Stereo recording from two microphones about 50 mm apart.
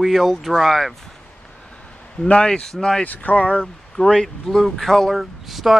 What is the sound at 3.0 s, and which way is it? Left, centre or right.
Speech, left.